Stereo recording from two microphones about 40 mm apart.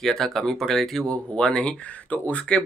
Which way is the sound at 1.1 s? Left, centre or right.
Left.